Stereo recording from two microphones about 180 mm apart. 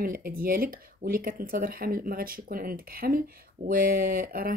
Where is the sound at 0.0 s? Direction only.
55° right (ahead or behind).